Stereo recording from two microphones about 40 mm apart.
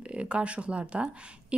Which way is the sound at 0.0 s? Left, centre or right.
Right.